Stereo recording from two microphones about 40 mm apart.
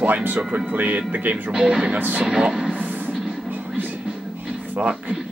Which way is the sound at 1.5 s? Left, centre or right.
Centre.